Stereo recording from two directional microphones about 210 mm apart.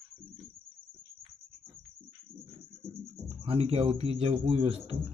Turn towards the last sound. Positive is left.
turn(degrees=-30)  # may be behind; listen again after turning